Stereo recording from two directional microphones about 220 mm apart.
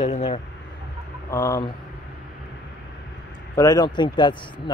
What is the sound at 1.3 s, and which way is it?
Speech, 15° left (ahead or behind).